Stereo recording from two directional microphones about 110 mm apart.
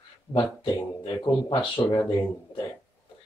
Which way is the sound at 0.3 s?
15° left (ahead or behind).